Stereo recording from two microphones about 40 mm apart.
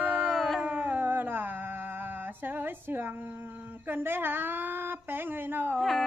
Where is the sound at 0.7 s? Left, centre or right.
Right.